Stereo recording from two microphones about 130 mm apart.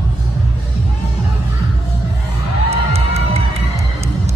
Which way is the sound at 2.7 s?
50° right (ahead or behind).